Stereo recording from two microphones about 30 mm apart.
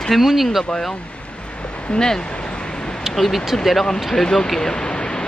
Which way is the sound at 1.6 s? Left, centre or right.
Left.